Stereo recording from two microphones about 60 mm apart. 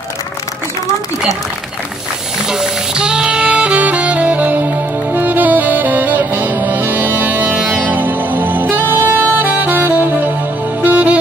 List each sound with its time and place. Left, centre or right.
2.4 s music: centre; by 11.1 s right